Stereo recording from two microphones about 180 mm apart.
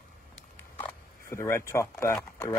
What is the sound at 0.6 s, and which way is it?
Speech, 15° left (ahead or behind).